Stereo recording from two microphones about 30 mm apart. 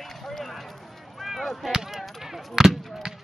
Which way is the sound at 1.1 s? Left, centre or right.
Centre.